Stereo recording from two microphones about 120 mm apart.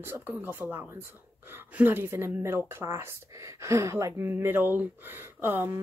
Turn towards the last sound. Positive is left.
turn(degrees=-20)  # may be behind; listen again after turning